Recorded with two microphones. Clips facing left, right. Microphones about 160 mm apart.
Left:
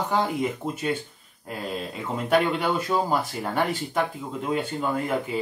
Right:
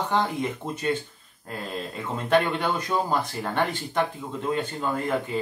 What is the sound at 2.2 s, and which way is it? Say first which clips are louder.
Speech: even; 5° left (ahead or behind).